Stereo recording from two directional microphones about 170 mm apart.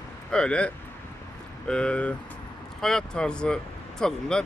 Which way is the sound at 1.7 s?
5° left (ahead or behind).